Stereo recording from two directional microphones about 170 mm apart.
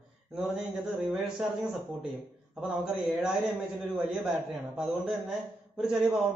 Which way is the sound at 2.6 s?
5° right (ahead or behind).